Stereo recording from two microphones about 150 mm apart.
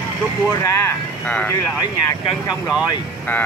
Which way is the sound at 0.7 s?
20° left (ahead or behind).